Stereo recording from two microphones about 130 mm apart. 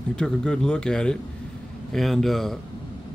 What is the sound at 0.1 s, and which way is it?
Speech, 5° left (ahead or behind).